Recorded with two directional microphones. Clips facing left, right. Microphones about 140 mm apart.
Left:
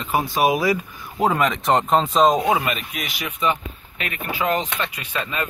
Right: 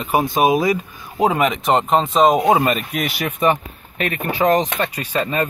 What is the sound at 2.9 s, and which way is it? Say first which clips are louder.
Speech: right 7 dB; 50° right (ahead or behind).